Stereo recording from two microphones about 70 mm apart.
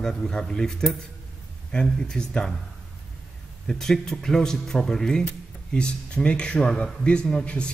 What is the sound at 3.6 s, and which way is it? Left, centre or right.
Speech, centre.